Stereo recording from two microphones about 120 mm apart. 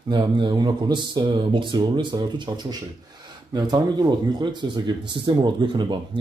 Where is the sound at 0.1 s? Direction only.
40° right (ahead or behind).